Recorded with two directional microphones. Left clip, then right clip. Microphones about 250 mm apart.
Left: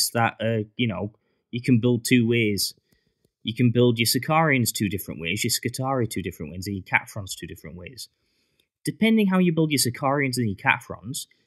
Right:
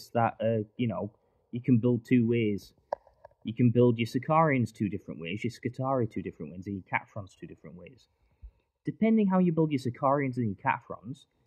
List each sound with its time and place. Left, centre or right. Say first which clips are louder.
0.0 s speech: left 5 dB; centre